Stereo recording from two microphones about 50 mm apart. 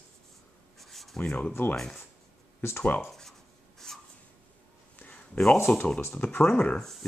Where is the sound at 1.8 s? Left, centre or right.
Centre.